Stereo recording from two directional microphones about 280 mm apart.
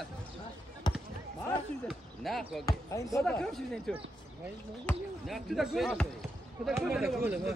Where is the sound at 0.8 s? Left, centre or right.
Centre.